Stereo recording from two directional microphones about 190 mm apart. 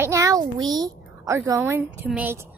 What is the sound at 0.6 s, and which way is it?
A woman's voice, 20° right (ahead or behind).